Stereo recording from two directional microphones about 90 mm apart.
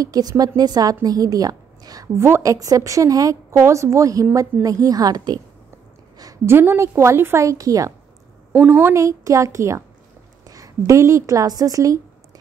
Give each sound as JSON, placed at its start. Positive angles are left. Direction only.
{"t": 0.0, "sound": "a woman's voice", "side_deg": -45}
{"t": 2.1, "sound": "a woman's voice", "side_deg": -30}
{"t": 6.1, "sound": "a sound", "side_deg": -45}
{"t": 6.4, "sound": "a woman's voice", "side_deg": -25}
{"t": 8.5, "sound": "speech", "side_deg": -20}
{"t": 8.9, "sound": "a woman's voice", "side_deg": -35}